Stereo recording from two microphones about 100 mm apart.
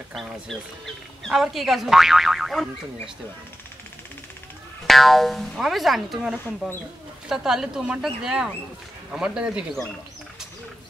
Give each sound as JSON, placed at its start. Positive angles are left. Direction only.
{"t": 0.1, "sound": "speech", "side_deg": 5}
{"t": 4.8, "sound": "a man's voice", "side_deg": 0}